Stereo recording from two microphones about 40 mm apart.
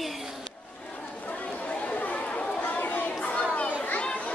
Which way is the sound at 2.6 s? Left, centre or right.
Left.